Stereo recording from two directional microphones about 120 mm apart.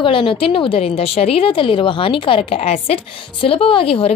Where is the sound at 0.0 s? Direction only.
45° left (ahead or behind).